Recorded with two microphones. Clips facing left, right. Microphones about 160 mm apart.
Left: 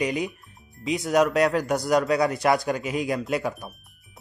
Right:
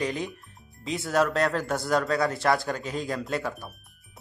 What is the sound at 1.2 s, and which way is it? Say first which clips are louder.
A man's voice: left 3 dB; 15° left (ahead or behind).